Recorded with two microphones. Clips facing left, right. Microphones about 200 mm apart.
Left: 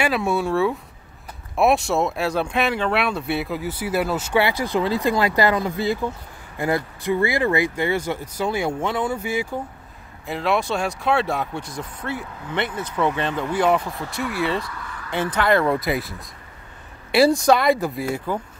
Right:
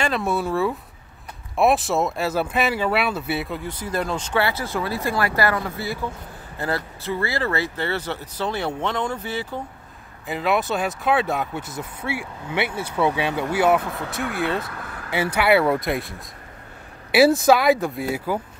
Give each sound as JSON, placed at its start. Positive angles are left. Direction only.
{"t": 0.0, "sound": "speech", "side_deg": 0}
{"t": 10.2, "sound": "speech", "side_deg": 0}
{"t": 14.6, "sound": "speech", "side_deg": -55}
{"t": 15.0, "sound": "speech", "side_deg": -10}